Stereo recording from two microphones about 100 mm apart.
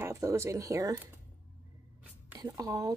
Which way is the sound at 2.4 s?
35° right (ahead or behind).